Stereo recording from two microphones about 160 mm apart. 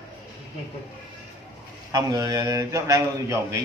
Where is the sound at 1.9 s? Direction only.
20° right (ahead or behind).